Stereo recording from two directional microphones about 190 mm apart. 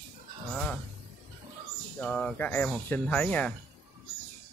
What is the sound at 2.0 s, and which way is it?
Speech, 5° left (ahead or behind).